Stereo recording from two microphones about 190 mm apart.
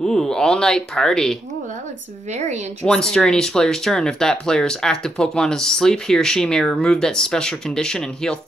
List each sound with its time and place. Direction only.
0.0 s speech: 5° left (ahead or behind)
2.3 s speech: 40° right (ahead or behind)
2.8 s speech: 5° left (ahead or behind)